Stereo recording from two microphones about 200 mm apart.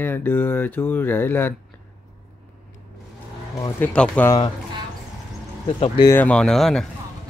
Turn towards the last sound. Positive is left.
turn(degrees=0)  # may be behind; listen again after turning